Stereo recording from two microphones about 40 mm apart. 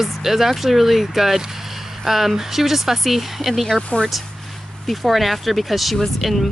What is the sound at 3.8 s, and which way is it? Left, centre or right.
Speech, left.